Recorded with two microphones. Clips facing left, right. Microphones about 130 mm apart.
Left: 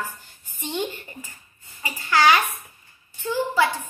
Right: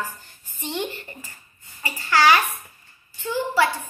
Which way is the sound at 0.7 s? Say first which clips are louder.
Left 1 dB; 15° left (ahead or behind).